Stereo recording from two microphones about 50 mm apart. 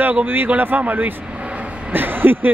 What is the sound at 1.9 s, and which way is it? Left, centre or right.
Speech, right.